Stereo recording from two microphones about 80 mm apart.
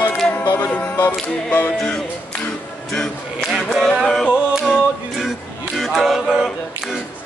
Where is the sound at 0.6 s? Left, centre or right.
Centre.